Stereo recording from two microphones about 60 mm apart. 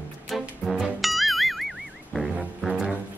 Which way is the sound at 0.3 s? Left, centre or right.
Centre.